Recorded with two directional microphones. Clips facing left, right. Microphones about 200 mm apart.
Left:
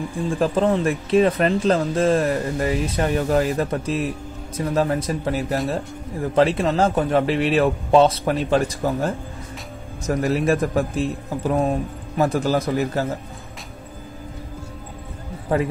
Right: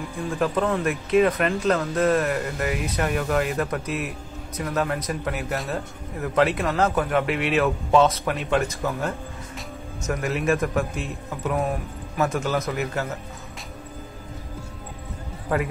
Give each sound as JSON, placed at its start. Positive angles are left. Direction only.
{"t": 0.4, "sound": "a man's voice", "side_deg": 30}
{"t": 15.5, "sound": "speech", "side_deg": 25}